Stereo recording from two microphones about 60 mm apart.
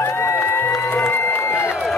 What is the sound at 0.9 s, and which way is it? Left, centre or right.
Crowd, left.